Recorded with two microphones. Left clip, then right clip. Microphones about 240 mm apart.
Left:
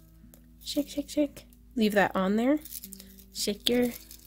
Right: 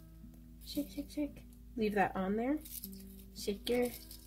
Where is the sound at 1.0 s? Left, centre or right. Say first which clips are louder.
Left 12 dB; left.